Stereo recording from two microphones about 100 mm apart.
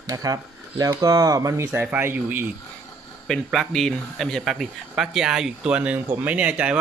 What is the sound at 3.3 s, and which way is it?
Speech, 5° left (ahead or behind).